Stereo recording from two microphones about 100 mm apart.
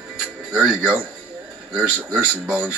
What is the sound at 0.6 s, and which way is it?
Speech, 10° right (ahead or behind).